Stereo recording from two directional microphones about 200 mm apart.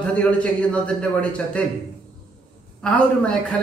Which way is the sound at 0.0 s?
5° left (ahead or behind).